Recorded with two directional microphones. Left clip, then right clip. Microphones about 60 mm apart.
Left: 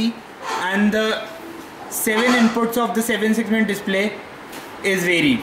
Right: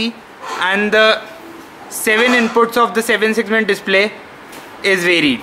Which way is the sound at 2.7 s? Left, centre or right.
Right.